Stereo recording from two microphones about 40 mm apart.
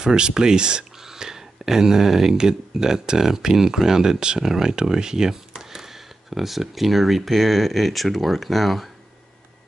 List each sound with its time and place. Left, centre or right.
0.0 s speech: centre